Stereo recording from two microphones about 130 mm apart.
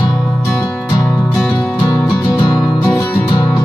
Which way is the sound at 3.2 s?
30° left (ahead or behind).